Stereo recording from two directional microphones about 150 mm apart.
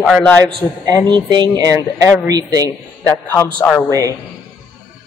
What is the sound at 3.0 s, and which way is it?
Speech, 15° left (ahead or behind).